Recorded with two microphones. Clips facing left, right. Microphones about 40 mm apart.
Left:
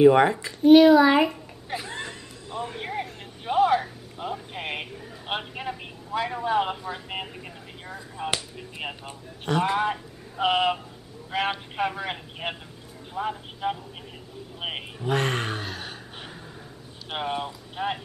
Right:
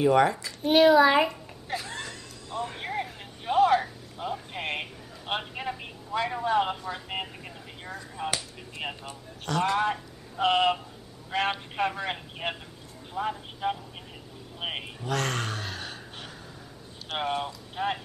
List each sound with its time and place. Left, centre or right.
0.0 s a man's voice: left
0.7 s a man's voice: centre
1.7 s a sound: centre
2.6 s a sound: centre
8.4 s chop: centre
9.0 s a man's voice: centre
9.8 s a man's voice: centre
14.6 s a sound: centre
15.0 s a man's voice: left
15.6 s gasp: centre
17.2 s a man's voice: centre